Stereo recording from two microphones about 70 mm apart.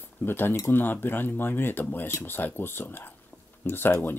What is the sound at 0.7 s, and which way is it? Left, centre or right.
Speech, left.